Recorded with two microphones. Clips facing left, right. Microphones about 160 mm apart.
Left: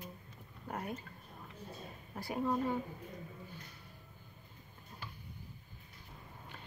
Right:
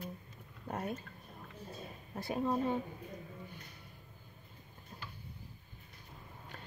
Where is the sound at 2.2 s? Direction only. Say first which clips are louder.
Right 1 dB; 25° right (ahead or behind).